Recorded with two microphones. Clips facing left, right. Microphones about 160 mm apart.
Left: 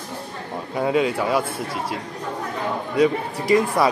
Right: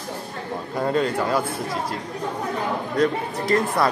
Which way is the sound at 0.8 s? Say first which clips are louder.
Left 2 dB; 5° left (ahead or behind).